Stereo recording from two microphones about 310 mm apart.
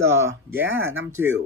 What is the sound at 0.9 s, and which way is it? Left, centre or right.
Speech, right.